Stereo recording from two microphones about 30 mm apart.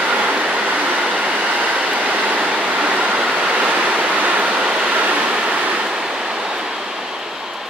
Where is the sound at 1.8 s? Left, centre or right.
Right.